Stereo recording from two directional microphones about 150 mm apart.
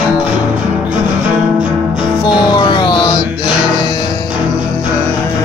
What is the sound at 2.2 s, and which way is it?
Music, 30° left (ahead or behind).